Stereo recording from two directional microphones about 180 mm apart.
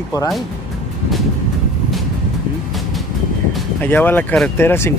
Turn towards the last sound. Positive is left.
turn(degrees=15)  # may be behind; listen again after turning